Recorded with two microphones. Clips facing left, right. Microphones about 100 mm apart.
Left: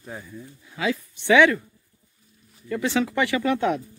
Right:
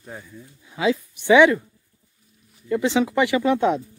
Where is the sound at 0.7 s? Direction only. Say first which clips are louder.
Right 5 dB; 20° right (ahead or behind).